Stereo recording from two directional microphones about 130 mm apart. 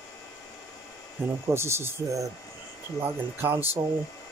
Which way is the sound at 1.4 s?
20° right (ahead or behind).